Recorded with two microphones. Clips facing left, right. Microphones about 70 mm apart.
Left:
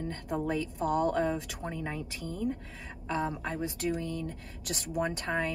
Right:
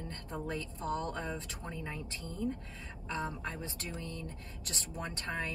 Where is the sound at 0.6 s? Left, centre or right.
Right.